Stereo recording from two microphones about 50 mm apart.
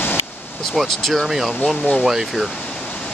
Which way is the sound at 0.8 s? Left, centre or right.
Centre.